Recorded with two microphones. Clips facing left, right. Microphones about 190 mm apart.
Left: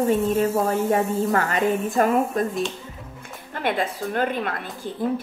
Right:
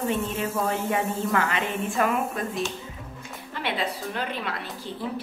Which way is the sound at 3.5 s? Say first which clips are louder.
Left 4 dB; 50° left (ahead or behind).